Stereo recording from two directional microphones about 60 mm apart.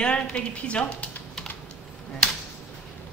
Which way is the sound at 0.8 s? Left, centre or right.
Left.